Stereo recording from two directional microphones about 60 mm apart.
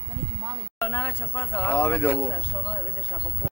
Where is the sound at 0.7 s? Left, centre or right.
Left.